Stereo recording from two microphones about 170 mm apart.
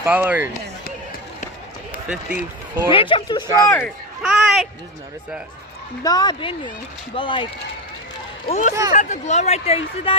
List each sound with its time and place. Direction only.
0.0 s speech: 10° right (ahead or behind)
2.0 s speech: 10° right (ahead or behind)
2.9 s speech: 30° left (ahead or behind)
3.7 s a sound: centre (ahead or behind)
6.0 s speech: 25° left (ahead or behind)
8.5 s speech: 45° left (ahead or behind)